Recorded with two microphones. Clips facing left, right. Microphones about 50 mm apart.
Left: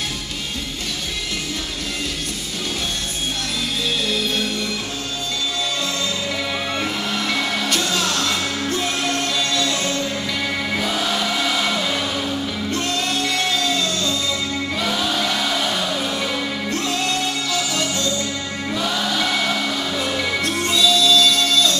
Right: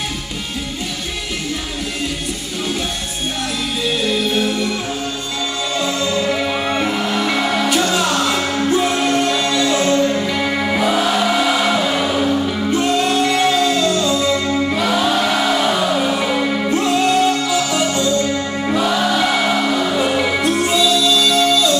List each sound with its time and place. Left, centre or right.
3.8 s music: centre
5.8 s music: centre
18.7 s music: right